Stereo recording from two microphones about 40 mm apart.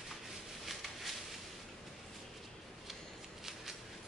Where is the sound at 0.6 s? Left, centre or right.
Centre.